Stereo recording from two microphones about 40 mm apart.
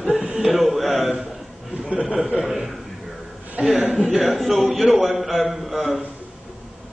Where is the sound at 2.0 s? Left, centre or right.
Centre.